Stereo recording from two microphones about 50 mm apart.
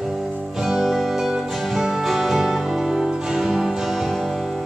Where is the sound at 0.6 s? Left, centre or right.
Centre.